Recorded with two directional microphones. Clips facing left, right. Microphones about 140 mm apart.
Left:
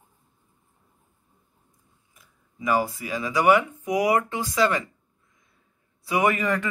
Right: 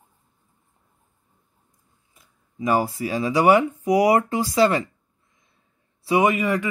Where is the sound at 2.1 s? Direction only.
30° right (ahead or behind).